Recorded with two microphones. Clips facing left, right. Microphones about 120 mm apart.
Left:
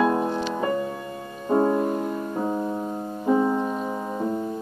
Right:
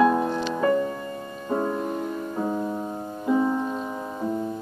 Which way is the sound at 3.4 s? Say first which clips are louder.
Left 1 dB; 15° left (ahead or behind).